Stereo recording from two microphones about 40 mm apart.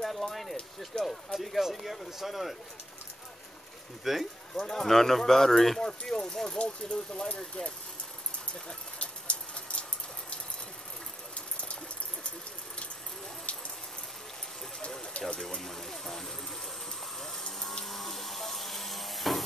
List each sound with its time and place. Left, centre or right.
0.0 s speech: centre
4.0 s speech: centre
4.6 s speech: centre
9.0 s a sound: left
13.5 s a sound: left
15.1 s speech: left
15.6 s speech: centre
17.5 s electric toothbrush: centre